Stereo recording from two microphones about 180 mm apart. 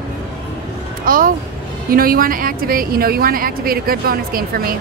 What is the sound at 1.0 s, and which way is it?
A woman's voice, 50° right (ahead or behind).